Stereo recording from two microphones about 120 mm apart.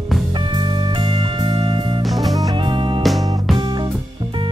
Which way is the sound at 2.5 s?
45° right (ahead or behind).